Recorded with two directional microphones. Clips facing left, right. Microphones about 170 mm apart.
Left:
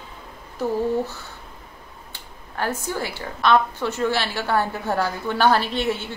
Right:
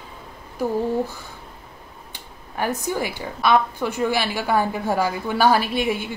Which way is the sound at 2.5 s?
15° right (ahead or behind).